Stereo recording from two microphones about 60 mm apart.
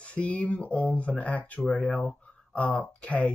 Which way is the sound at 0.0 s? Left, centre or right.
Centre.